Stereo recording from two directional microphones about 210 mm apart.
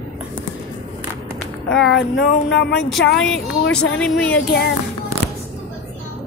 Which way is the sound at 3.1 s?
5° left (ahead or behind).